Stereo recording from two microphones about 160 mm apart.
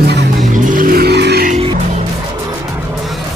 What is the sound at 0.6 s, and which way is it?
Vehicle, 60° right (ahead or behind).